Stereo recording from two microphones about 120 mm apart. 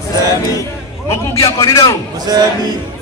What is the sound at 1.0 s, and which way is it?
Speech, 25° left (ahead or behind).